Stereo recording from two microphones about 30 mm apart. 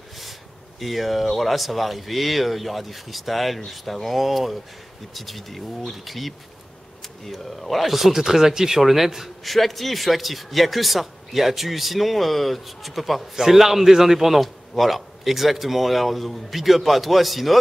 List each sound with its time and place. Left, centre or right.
0.7 s a man's voice: centre
9.5 s a man's voice: centre